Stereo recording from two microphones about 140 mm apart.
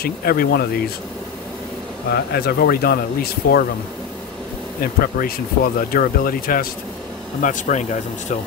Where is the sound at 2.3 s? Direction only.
90° left.